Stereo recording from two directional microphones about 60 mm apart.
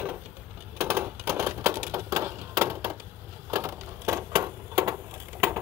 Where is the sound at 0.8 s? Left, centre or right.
Right.